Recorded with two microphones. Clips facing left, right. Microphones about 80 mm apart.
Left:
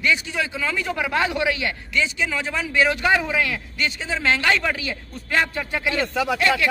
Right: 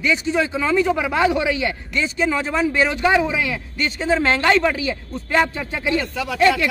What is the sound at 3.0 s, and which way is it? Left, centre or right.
Speech, centre.